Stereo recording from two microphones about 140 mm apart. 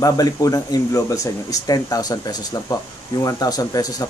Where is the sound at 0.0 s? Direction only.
25° left (ahead or behind).